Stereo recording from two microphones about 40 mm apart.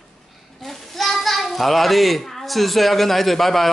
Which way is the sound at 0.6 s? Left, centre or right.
Centre.